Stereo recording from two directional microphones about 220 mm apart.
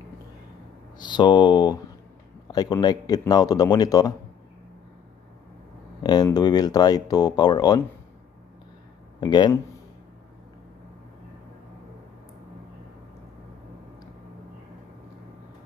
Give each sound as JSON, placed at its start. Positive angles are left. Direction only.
{"t": 0.9, "sound": "speech", "side_deg": 20}
{"t": 6.0, "sound": "speech", "side_deg": 20}
{"t": 9.2, "sound": "speech", "side_deg": 20}